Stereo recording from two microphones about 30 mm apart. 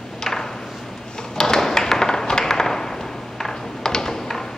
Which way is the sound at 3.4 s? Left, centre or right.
Centre.